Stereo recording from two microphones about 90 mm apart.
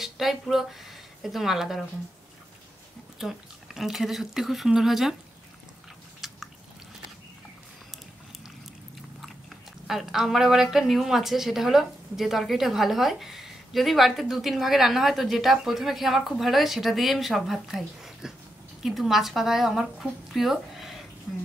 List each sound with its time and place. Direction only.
0.0 s speech: centre (ahead or behind)
3.2 s a woman's voice: 5° right (ahead or behind)
6.2 s drip: centre (ahead or behind)
9.8 s a woman's voice: 5° right (ahead or behind)